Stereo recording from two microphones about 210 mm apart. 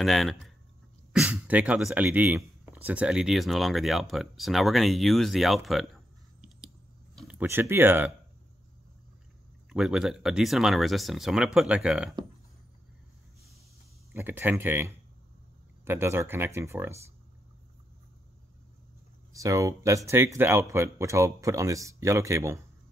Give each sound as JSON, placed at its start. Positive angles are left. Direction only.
{"t": 0.0, "sound": "speech", "side_deg": 0}
{"t": 7.2, "sound": "speech", "side_deg": -5}
{"t": 9.7, "sound": "speech", "side_deg": -5}
{"t": 14.1, "sound": "speech", "side_deg": -10}
{"t": 19.3, "sound": "speech", "side_deg": -15}